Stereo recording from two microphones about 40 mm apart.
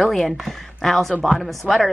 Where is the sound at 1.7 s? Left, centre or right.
Right.